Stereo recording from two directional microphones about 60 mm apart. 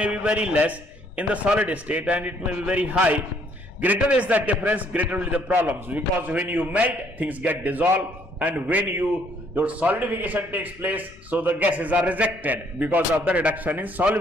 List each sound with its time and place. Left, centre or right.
0.0 s a man's voice: right